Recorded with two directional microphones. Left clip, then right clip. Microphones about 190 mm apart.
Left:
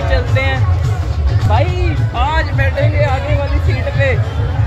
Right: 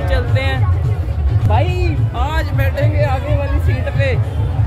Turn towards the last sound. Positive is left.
turn(degrees=5)  # may be behind; listen again after turning